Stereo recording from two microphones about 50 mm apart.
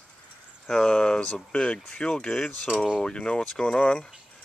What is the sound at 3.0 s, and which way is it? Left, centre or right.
Speech, centre.